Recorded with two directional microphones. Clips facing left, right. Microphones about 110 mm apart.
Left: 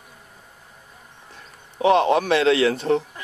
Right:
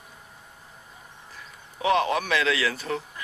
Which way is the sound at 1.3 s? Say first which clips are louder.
Left 1 dB; 30° left (ahead or behind).